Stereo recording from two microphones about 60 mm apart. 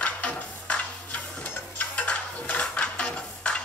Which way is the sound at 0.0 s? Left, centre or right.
Centre.